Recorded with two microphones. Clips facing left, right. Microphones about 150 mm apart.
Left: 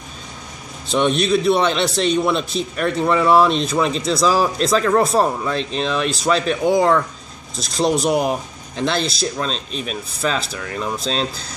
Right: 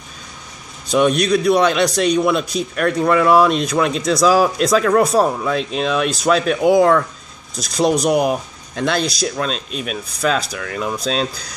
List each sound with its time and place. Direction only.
0.9 s speech: centre (ahead or behind)
8.1 s speech: 15° right (ahead or behind)
8.7 s speech: centre (ahead or behind)